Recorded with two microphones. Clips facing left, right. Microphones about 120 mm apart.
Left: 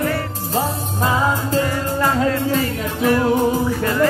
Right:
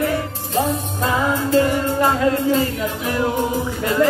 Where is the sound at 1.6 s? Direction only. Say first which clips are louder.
Right 2 dB; 20° right (ahead or behind).